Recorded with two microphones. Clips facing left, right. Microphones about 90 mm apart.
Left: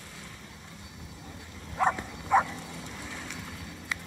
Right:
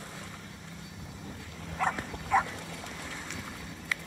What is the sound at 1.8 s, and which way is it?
Dog, 30° left (ahead or behind).